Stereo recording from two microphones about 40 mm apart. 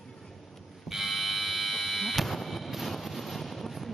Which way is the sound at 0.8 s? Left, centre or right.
Centre.